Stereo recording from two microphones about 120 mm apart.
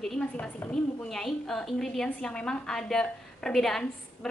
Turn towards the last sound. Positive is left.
turn(degrees=5)  # may be behind; listen again after turning